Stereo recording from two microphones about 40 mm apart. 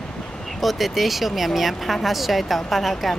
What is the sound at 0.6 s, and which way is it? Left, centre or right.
A child's voice, centre.